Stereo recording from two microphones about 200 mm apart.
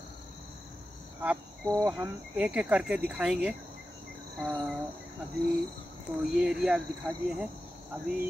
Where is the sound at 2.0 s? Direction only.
5° right (ahead or behind).